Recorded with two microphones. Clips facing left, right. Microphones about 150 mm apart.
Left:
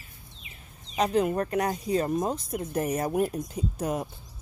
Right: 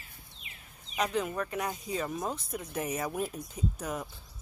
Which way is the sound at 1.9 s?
40° left (ahead or behind).